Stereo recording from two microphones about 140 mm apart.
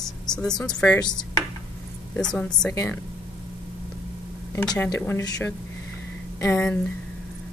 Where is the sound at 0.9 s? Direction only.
30° left (ahead or behind).